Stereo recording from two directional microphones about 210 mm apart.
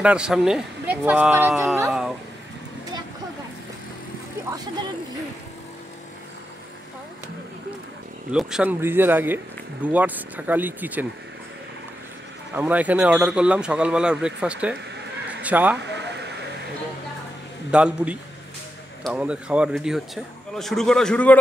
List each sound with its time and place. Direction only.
0.0 s a man's voice: 5° right (ahead or behind)
1.9 s a sound: centre (ahead or behind)
8.3 s speech: 5° right (ahead or behind)
12.5 s a man's voice: 10° right (ahead or behind)
15.8 s a sound: 55° right (ahead or behind)
17.6 s a man's voice: 5° right (ahead or behind)